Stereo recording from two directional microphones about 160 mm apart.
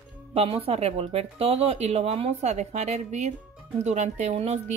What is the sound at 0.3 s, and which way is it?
Speech, 40° right (ahead or behind).